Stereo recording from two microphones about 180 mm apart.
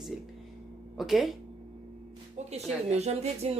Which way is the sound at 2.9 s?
35° right (ahead or behind).